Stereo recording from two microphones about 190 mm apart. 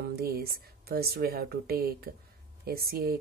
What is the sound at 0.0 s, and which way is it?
Speech, 55° right (ahead or behind).